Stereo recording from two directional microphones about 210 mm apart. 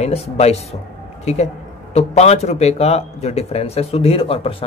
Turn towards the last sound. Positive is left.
turn(degrees=25)  # may be behind; listen again after turning